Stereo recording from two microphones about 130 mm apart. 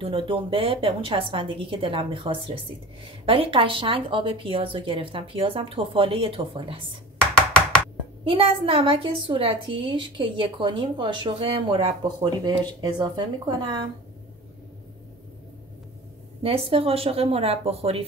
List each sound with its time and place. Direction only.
0.0 s a woman's voice: 45° right (ahead or behind)
7.3 s a sound: 5° left (ahead or behind)
8.2 s a woman's voice: 45° right (ahead or behind)
16.4 s a woman's voice: 45° right (ahead or behind)